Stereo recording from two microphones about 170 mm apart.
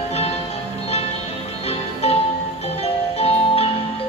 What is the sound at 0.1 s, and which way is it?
Music, 40° left (ahead or behind).